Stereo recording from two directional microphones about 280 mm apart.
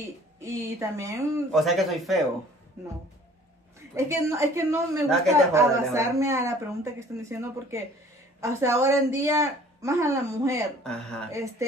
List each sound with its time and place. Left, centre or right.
0.0 s a woman's voice: centre
3.9 s a woman's voice: centre
10.8 s speech: centre
11.3 s a woman's voice: centre